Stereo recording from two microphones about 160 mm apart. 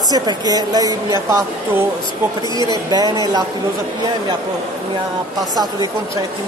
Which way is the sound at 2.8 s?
25° right (ahead or behind).